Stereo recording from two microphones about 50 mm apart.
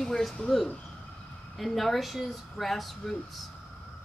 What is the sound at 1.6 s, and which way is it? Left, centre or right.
Speech, centre.